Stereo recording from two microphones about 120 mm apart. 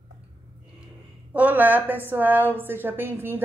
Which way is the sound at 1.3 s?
15° right (ahead or behind).